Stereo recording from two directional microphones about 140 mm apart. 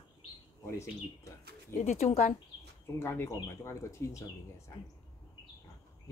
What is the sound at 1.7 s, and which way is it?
Speech, 55° left (ahead or behind).